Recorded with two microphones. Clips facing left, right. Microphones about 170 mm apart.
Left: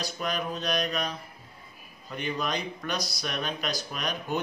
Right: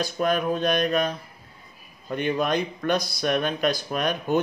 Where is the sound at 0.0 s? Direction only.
50° right (ahead or behind).